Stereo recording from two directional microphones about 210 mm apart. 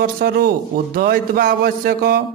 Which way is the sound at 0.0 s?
45° right (ahead or behind).